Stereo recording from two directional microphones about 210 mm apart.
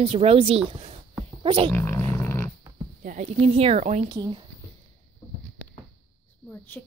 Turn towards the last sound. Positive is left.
turn(degrees=10)  # may be behind; listen again after turning